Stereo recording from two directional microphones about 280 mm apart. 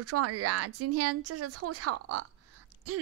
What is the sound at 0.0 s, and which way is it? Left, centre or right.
A woman's voice, right.